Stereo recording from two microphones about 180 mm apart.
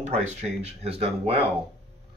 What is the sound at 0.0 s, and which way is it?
Speech, 35° right (ahead or behind).